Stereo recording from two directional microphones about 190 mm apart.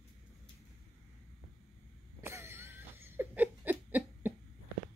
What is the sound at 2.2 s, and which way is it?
Laughter, 15° right (ahead or behind).